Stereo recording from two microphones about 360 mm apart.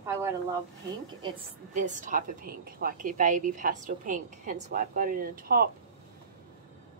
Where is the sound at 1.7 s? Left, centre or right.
Right.